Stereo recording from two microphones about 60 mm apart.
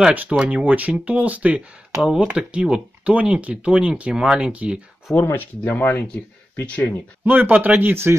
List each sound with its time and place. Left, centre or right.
0.1 s speech: right
4.1 s speech: centre
4.4 s speech: centre
5.1 s speech: left
5.6 s speech: left
7.2 s speech: right